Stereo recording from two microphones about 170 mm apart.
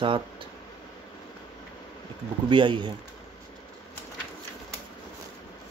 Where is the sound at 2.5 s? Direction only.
30° right (ahead or behind).